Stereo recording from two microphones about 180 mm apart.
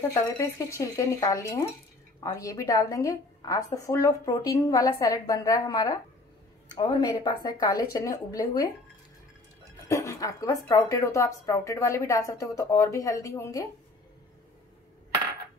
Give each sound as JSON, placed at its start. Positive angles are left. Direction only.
{"t": 0.1, "sound": "a woman's voice", "side_deg": 15}
{"t": 9.8, "sound": "a woman's voice", "side_deg": 15}